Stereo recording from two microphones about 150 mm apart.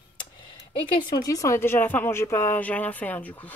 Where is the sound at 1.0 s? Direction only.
25° left (ahead or behind).